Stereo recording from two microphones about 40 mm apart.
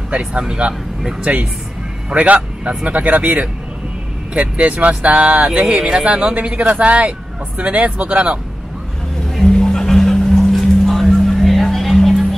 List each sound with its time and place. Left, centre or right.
0.3 s speech: right
2.1 s speech: right
6.0 s speech: right
9.3 s music: centre